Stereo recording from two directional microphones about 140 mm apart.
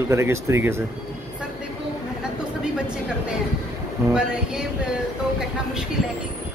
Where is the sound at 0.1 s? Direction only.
20° right (ahead or behind).